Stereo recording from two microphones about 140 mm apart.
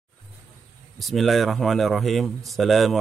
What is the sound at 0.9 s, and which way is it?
Speech, centre (ahead or behind).